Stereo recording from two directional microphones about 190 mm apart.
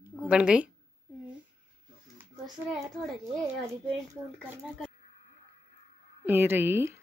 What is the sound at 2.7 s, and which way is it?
Speech, centre (ahead or behind).